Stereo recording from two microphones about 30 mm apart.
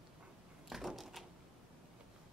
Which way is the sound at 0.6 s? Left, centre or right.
Centre.